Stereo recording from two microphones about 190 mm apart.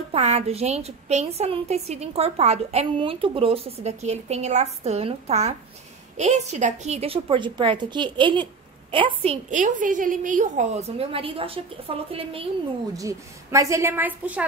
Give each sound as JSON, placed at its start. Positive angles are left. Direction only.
{"t": 0.1, "sound": "a woman's voice", "side_deg": -35}
{"t": 12.9, "sound": "a woman's voice", "side_deg": -15}